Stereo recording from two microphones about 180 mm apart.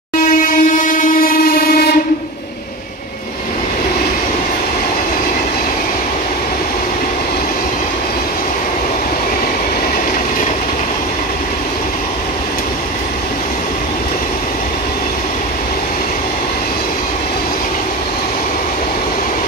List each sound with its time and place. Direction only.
0.2 s train: 50° left (ahead or behind)